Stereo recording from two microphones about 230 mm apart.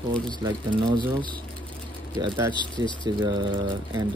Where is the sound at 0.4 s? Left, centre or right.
Right.